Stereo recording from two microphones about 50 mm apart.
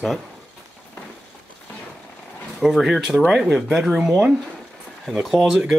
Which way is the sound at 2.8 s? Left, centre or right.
Centre.